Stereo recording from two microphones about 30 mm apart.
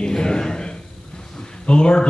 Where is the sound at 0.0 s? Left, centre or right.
Left.